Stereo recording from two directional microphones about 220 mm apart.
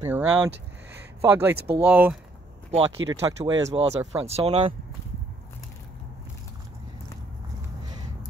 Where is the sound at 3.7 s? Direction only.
30° right (ahead or behind).